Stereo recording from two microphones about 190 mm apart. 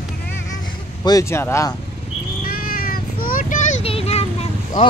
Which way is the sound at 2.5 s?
50° left (ahead or behind).